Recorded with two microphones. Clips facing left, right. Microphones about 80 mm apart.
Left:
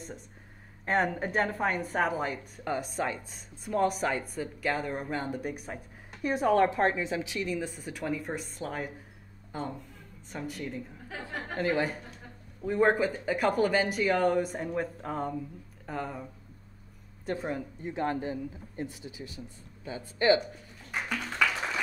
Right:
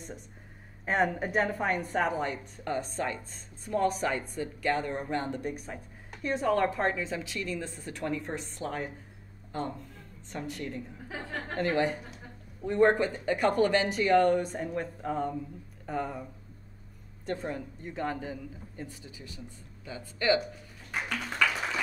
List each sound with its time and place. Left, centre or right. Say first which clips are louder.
0.8 s a woman's voice: even; centre
17.3 s speech: left 1 dB; centre
18.8 s speech: left 6 dB; left